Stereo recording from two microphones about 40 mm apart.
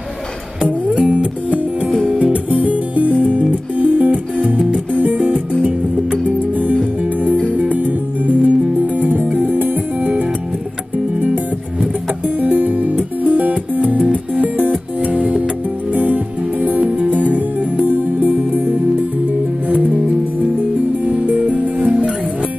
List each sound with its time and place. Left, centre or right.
0.7 s music: right
12.4 s music: right
17.8 s music: right